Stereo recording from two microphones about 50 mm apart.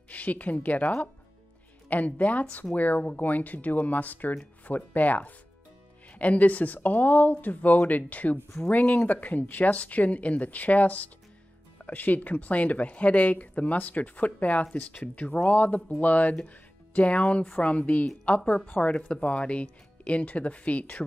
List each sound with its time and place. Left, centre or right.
0.1 s speech: left